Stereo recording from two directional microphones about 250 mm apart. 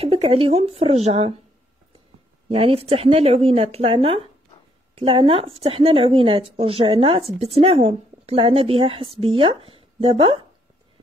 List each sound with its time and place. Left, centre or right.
0.0 s a woman's voice: right
2.5 s a woman's voice: right